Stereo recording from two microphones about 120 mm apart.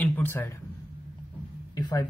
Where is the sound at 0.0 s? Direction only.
20° left (ahead or behind).